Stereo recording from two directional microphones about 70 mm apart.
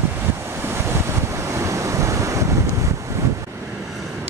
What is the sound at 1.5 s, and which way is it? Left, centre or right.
Waves, right.